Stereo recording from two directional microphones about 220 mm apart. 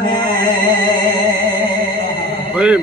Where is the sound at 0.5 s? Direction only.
20° left (ahead or behind).